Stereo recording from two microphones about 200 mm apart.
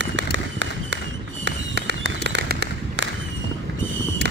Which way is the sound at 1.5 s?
60° right (ahead or behind).